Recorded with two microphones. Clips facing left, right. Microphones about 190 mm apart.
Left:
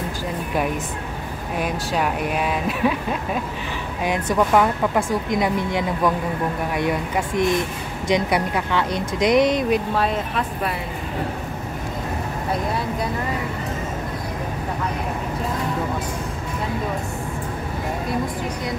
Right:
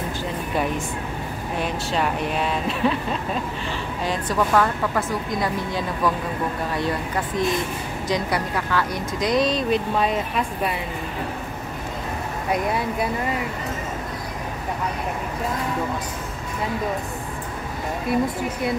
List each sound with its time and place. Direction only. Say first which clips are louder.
1.6 s speech: left 1 dB; 10° left (ahead or behind)
9.9 s speech: even; centre (ahead or behind)